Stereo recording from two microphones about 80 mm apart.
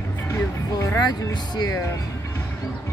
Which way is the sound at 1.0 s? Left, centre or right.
Left.